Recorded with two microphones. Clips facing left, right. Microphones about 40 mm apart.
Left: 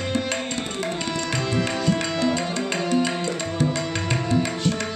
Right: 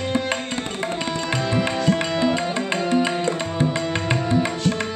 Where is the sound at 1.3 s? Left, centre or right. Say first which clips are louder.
Right 3 dB; right.